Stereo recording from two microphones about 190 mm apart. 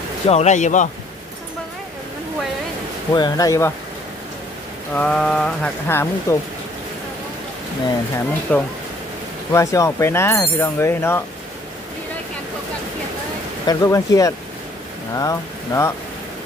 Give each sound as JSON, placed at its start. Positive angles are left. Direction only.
{"t": 0.3, "sound": "speech", "side_deg": 35}
{"t": 3.1, "sound": "speech", "side_deg": 20}
{"t": 4.9, "sound": "speech", "side_deg": 5}
{"t": 8.5, "sound": "speech", "side_deg": 5}
{"t": 13.7, "sound": "speech", "side_deg": 15}